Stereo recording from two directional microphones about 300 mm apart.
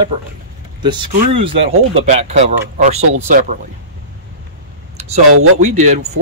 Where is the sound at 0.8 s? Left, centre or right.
Centre.